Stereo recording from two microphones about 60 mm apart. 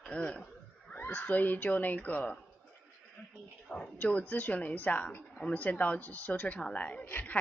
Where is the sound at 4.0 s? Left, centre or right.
Left.